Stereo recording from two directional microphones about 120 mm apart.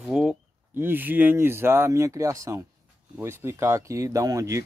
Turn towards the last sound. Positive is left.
turn(degrees=-25)  # may be behind; listen again after turning